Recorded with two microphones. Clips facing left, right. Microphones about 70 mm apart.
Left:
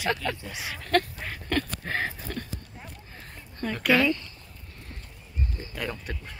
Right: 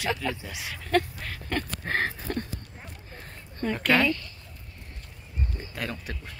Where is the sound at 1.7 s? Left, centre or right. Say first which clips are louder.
Right 2 dB; right.